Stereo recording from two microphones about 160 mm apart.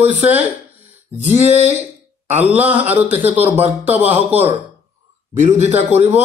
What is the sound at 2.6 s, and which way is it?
Speech, 10° right (ahead or behind).